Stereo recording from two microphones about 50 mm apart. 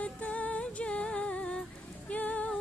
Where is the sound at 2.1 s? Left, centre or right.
Left.